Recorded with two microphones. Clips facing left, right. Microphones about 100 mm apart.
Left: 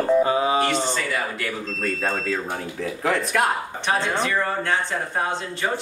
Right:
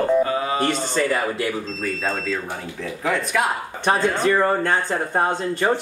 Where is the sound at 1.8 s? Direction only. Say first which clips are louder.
Even; centre (ahead or behind).